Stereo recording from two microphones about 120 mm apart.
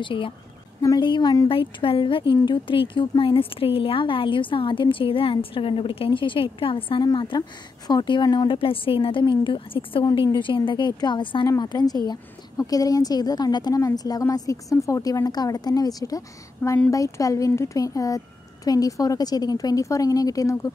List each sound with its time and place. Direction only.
0.0 s speech: 45° left (ahead or behind)
0.7 s a woman's voice: 35° left (ahead or behind)
1.5 s a woman's voice: 50° left (ahead or behind); by 20.7 s 30° left (ahead or behind)